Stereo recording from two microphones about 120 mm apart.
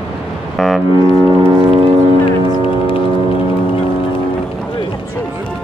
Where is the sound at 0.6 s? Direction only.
Centre (ahead or behind).